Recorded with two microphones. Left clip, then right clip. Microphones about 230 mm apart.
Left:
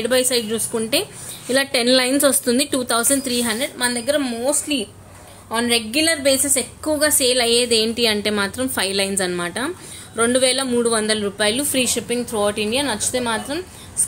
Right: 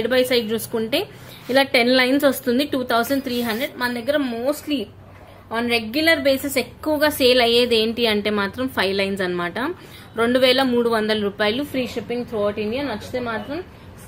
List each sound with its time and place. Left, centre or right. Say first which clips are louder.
0.0 s a woman's voice: even; centre
11.7 s a woman's voice: left 4 dB; centre